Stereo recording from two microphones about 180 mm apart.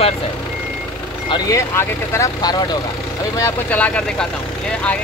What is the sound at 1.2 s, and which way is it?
Speech, 20° left (ahead or behind).